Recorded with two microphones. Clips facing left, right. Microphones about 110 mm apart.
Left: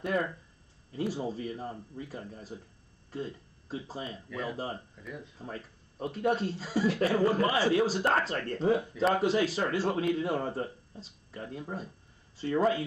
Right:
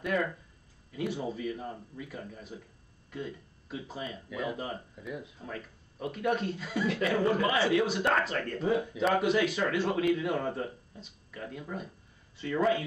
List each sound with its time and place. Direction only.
0.0 s speech: 35° left (ahead or behind)
4.3 s speech: 5° right (ahead or behind)
5.4 s speech: 35° left (ahead or behind)